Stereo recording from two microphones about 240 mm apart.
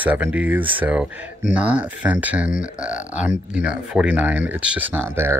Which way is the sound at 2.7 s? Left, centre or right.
Centre.